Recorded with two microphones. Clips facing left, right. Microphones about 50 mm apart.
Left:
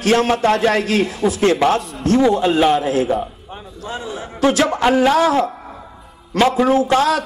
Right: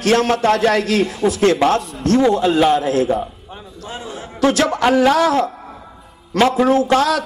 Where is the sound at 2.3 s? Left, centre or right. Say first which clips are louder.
Even; centre.